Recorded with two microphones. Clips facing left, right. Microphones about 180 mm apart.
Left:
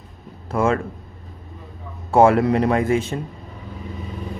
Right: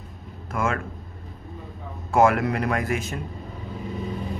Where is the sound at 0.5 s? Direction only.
30° left (ahead or behind).